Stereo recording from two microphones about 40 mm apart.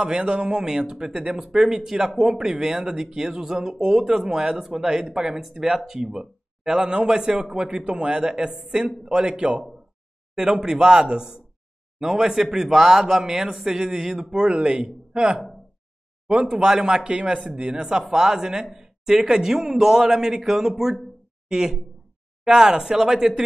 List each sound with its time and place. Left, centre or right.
0.0 s a man's voice: right
10.3 s a man's voice: centre